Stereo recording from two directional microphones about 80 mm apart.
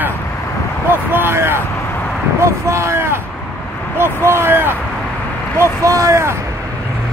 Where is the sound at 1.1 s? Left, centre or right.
Right.